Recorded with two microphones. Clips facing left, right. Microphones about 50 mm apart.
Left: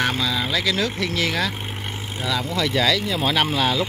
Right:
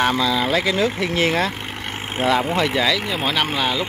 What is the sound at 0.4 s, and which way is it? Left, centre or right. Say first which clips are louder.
Speech: right 4 dB; right.